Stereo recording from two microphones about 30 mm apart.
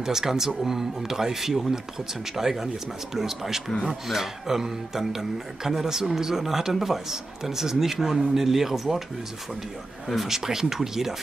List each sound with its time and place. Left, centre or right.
0.0 s speech: centre
10.2 s speech: centre